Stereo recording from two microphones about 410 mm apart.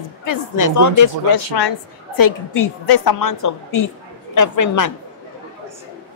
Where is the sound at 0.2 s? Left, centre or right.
Left.